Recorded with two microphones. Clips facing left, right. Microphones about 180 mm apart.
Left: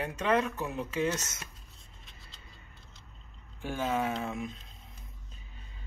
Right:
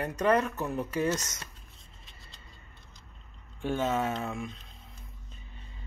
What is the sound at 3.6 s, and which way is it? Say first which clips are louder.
Speech: right 2 dB; 5° left (ahead or behind).